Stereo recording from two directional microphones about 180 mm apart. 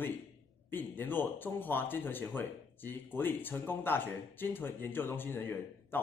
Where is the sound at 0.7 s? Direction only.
10° left (ahead or behind).